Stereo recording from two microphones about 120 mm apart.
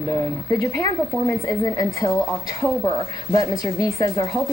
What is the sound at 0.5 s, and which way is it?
Speech, 25° left (ahead or behind).